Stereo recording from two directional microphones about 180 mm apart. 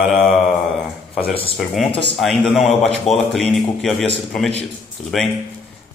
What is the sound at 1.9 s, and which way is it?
Speech, 30° left (ahead or behind).